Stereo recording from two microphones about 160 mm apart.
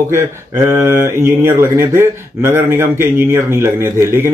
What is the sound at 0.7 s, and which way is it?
Speech, 15° right (ahead or behind).